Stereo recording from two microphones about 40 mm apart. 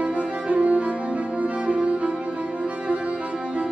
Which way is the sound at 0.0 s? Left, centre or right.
Right.